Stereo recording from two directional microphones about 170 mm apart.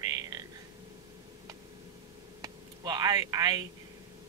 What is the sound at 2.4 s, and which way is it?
Speech, 25° right (ahead or behind).